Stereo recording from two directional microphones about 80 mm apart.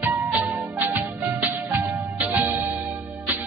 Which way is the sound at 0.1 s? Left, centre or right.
Right.